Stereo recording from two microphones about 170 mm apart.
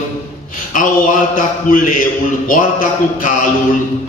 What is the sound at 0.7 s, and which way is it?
A man's voice, 50° left (ahead or behind).